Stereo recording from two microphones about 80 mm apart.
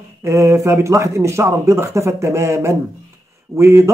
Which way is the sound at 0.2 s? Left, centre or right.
Right.